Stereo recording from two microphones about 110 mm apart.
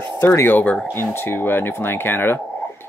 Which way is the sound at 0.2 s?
20° left (ahead or behind).